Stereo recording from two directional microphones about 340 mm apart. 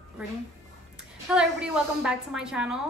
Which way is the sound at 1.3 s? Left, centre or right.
Centre.